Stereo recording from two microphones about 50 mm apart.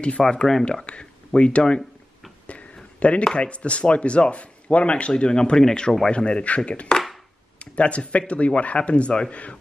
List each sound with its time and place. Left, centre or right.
0.2 s speech: centre
0.8 s speech: left
2.4 s a sound: left
3.3 s speech: left